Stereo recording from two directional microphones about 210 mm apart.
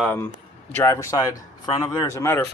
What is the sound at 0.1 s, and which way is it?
Speech, 10° left (ahead or behind).